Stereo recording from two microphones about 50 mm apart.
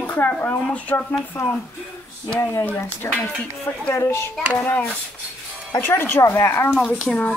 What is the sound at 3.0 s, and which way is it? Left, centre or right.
A child's voice, left.